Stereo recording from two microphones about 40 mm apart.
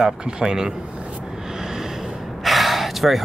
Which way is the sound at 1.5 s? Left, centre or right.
Centre.